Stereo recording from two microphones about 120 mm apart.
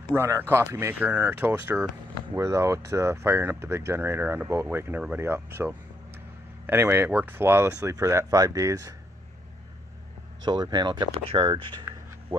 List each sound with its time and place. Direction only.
0.1 s speech: 20° right (ahead or behind)
10.4 s speech: 35° right (ahead or behind)